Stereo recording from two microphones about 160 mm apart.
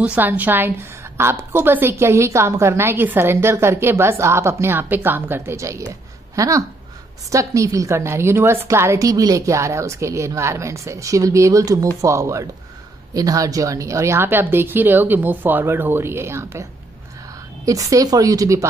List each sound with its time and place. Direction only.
0.0 s a woman's voice: 10° right (ahead or behind)
17.6 s a woman's voice: 20° right (ahead or behind)